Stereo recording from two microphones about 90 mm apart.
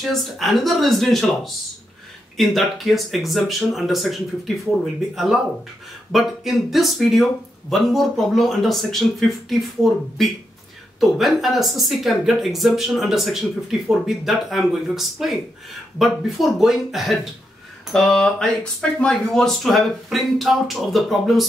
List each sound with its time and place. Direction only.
0.0 s speech: centre (ahead or behind)
11.0 s speech: centre (ahead or behind)